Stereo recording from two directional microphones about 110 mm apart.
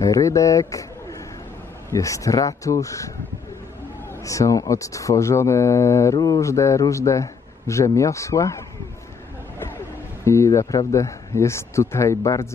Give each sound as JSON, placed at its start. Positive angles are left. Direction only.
{"t": 0.0, "sound": "a man's voice", "side_deg": 30}
{"t": 1.9, "sound": "a man's voice", "side_deg": 30}
{"t": 4.2, "sound": "a man's voice", "side_deg": 30}
{"t": 10.2, "sound": "a man's voice", "side_deg": 25}